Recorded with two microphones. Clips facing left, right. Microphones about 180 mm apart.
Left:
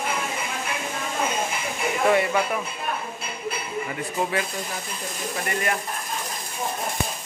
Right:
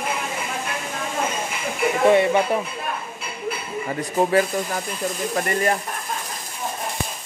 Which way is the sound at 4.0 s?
40° right (ahead or behind).